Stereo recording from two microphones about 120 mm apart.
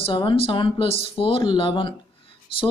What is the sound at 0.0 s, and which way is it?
A man's voice, 45° left (ahead or behind).